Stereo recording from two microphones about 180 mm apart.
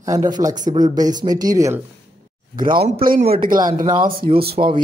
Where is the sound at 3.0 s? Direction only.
55° right (ahead or behind).